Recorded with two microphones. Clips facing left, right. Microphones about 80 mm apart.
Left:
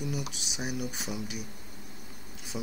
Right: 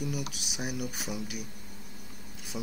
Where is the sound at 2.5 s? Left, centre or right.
Centre.